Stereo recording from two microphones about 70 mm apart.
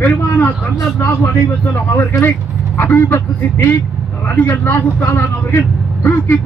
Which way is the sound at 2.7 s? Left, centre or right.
Left.